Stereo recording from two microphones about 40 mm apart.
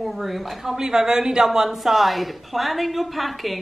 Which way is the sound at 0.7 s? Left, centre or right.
Centre.